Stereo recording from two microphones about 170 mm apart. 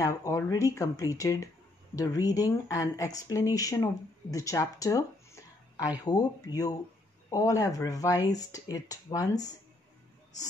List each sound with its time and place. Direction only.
0.0 s speech: 20° left (ahead or behind)